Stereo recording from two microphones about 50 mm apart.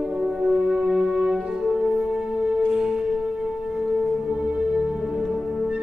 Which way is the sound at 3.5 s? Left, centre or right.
Centre.